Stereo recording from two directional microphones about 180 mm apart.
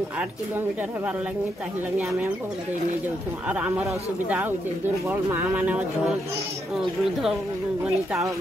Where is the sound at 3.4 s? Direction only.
5° right (ahead or behind).